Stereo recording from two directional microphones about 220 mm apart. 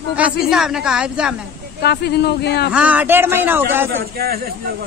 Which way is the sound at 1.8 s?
45° left (ahead or behind).